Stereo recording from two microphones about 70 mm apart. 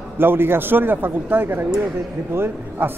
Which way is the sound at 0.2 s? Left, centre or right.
Right.